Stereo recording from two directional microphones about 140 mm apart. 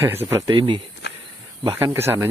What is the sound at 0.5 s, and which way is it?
Speech, 35° right (ahead or behind).